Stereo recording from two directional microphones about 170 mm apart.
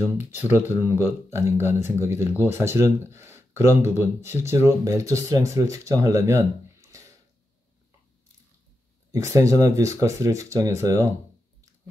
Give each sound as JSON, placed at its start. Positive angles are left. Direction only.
{"t": 0.0, "sound": "speech", "side_deg": -10}
{"t": 9.1, "sound": "speech", "side_deg": -20}